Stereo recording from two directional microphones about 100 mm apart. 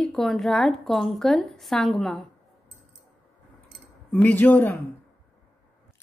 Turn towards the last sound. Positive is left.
turn(degrees=15)  # may be behind; listen again after turning